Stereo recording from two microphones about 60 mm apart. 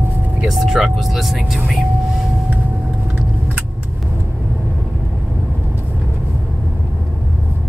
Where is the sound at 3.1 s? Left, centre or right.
Right.